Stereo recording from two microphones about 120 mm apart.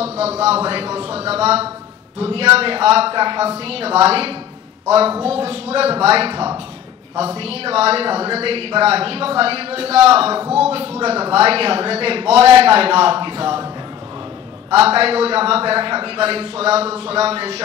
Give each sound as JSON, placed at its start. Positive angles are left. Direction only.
{"t": 0.2, "sound": "a man's voice", "side_deg": -60}
{"t": 14.7, "sound": "a man's voice", "side_deg": -55}